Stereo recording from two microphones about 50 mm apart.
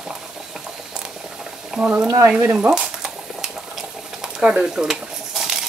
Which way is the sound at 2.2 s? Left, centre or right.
Right.